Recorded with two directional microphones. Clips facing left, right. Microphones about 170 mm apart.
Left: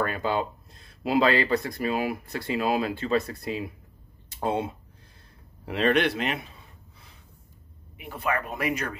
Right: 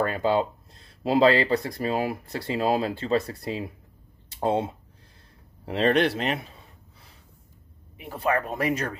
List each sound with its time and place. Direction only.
0.0 s speech: 30° right (ahead or behind)
5.7 s speech: 35° right (ahead or behind)
8.0 s speech: 35° right (ahead or behind)